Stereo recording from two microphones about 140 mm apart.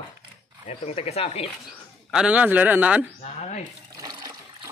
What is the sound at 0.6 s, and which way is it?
Speech, 50° left (ahead or behind).